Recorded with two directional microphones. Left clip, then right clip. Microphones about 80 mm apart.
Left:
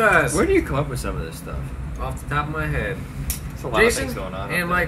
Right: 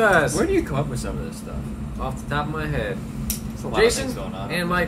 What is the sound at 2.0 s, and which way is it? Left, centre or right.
Speech, centre.